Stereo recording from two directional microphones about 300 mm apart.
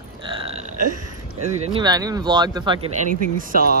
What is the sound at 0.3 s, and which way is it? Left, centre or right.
Burping, centre.